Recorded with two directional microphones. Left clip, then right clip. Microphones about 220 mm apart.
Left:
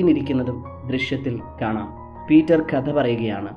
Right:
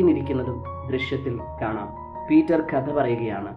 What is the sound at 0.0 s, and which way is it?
Speech, 30° left (ahead or behind).